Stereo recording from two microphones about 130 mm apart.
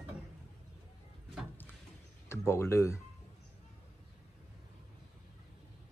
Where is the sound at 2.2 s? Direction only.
20° left (ahead or behind).